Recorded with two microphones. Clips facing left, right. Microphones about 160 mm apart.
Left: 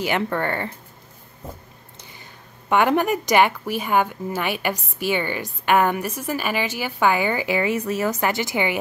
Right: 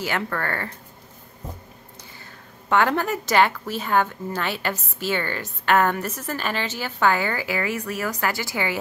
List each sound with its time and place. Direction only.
0.0 s speech: 20° left (ahead or behind)
2.7 s a woman's voice: 15° left (ahead or behind)